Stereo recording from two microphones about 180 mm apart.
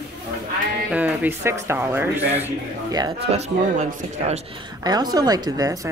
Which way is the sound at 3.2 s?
35° right (ahead or behind).